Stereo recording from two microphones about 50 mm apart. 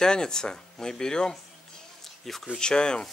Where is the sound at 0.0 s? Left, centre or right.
Centre.